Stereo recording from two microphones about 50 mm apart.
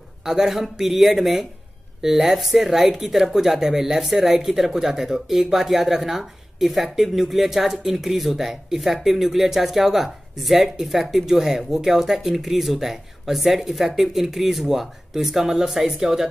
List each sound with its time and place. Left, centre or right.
0.2 s speech: centre